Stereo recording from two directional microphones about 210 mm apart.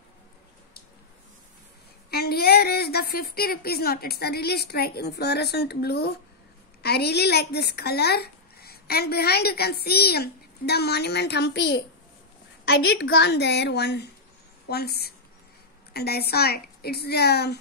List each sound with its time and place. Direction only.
2.0 s a woman's voice: 50° left (ahead or behind)